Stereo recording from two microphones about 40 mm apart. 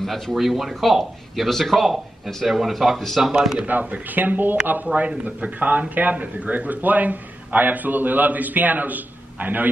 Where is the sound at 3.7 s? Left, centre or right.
Right.